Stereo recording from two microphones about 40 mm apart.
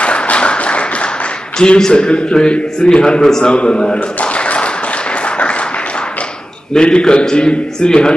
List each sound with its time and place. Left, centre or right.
0.0 s applause: left
1.8 s a man's voice: left
3.5 s a man's voice: left
6.7 s a man's voice: left